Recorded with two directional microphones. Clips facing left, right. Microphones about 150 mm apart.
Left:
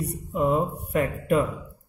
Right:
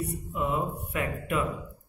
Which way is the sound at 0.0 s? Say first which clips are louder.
Left 6 dB; 40° left (ahead or behind).